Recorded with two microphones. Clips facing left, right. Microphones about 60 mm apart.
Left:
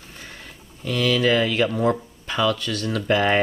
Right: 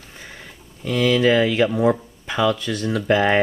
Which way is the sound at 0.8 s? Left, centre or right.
Centre.